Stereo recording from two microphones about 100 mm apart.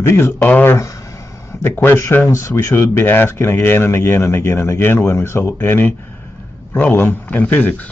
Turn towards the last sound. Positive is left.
turn(degrees=15)  # may be behind; listen again after turning